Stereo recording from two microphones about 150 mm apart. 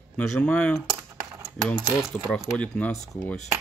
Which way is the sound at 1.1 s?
20° right (ahead or behind).